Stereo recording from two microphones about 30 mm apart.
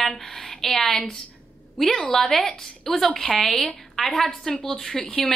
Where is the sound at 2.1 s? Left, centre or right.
Centre.